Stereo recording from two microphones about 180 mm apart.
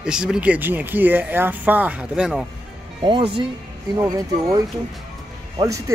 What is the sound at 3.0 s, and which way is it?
Speech, 25° right (ahead or behind).